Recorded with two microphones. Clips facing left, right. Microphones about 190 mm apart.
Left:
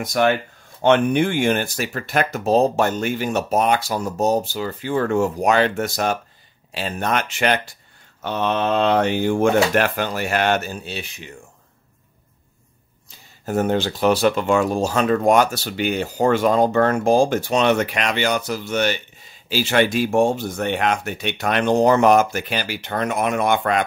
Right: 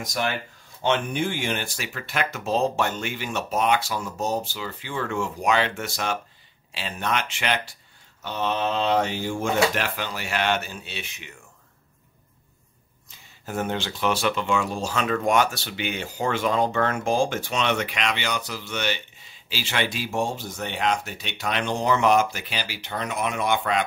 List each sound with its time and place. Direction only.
0.0 s speech: 60° left (ahead or behind); by 7.6 s 45° left (ahead or behind)
8.2 s speech: 60° left (ahead or behind); by 11.3 s 35° left (ahead or behind)
13.5 s speech: 40° left (ahead or behind)